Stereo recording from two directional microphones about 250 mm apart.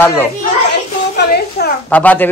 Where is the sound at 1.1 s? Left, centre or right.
Left.